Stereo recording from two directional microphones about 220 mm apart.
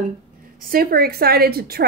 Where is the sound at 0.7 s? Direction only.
40° right (ahead or behind).